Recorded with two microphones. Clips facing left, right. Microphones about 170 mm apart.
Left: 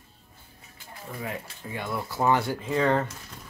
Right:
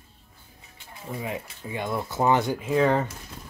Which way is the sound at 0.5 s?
20° right (ahead or behind).